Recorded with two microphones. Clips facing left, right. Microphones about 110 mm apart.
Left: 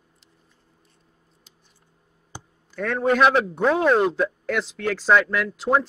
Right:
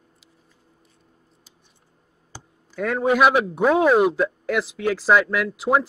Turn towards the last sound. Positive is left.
turn(degrees=-10)  # may be behind; listen again after turning